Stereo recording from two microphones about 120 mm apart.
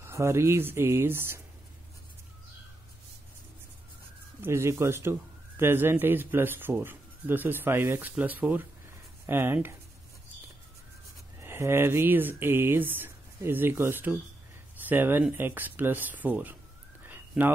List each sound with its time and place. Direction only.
0.0 s speech: 20° right (ahead or behind)
4.4 s speech: 20° right (ahead or behind)
11.3 s speech: 20° right (ahead or behind)